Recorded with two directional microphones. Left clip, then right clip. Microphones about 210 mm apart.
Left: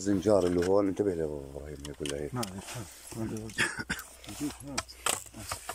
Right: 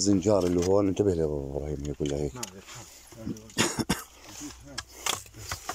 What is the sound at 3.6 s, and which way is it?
Cough, 25° right (ahead or behind).